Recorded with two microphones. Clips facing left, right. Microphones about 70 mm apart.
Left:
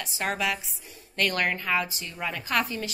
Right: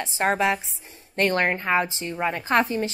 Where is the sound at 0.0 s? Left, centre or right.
Right.